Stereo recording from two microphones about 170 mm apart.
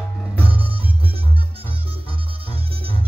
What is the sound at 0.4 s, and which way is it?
Music, 35° right (ahead or behind).